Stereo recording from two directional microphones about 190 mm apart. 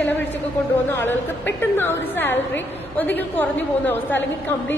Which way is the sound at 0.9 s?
10° left (ahead or behind).